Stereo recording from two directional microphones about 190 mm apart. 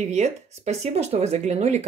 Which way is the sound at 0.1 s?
35° right (ahead or behind).